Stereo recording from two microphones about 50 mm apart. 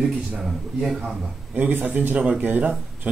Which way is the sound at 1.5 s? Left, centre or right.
Right.